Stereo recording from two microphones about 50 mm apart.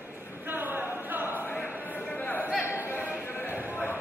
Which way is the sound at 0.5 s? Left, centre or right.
Right.